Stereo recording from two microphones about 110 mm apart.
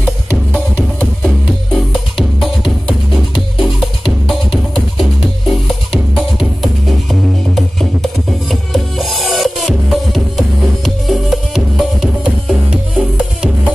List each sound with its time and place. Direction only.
1.2 s music: centre (ahead or behind)
5.5 s music: centre (ahead or behind)